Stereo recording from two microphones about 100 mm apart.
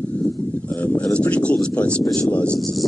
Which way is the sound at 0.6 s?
20° left (ahead or behind).